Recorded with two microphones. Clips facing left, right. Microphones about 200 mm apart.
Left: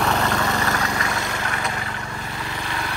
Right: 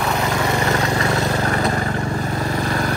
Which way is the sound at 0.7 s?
30° right (ahead or behind).